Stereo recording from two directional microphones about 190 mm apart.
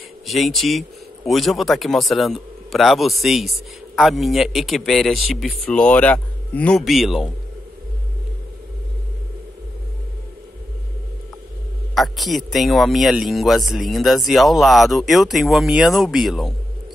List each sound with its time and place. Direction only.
0.3 s speech: centre (ahead or behind)
11.9 s speech: centre (ahead or behind)